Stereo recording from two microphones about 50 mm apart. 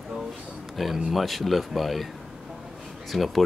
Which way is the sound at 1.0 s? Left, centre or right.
Centre.